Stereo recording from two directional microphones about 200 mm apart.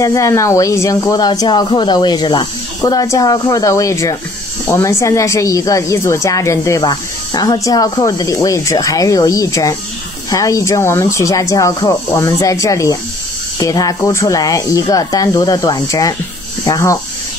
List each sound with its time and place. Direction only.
0.0 s speech: 15° left (ahead or behind)